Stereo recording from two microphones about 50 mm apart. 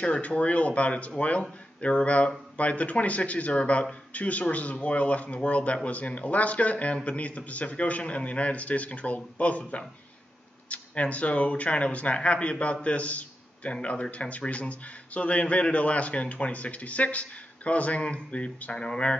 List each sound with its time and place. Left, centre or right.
0.0 s a man's voice: left